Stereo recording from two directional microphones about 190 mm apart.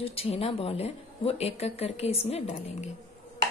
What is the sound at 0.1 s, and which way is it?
A woman's voice, 30° left (ahead or behind).